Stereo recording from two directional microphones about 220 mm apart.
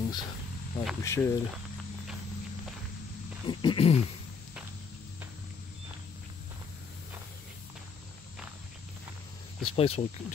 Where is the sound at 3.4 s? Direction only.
25° left (ahead or behind).